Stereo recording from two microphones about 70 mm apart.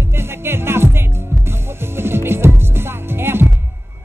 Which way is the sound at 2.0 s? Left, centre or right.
Right.